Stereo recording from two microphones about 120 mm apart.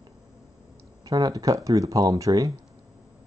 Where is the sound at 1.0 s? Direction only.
30° right (ahead or behind).